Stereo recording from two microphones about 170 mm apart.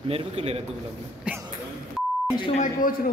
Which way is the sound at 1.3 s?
5° right (ahead or behind).